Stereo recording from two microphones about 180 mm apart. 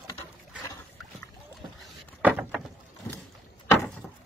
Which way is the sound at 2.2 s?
10° right (ahead or behind).